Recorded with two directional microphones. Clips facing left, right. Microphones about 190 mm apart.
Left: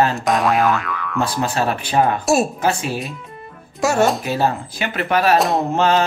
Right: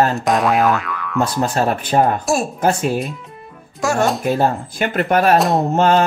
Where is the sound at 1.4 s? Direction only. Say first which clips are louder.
Right 2 dB; 45° right (ahead or behind).